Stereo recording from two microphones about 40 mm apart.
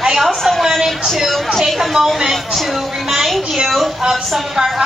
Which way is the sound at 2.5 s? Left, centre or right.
Centre.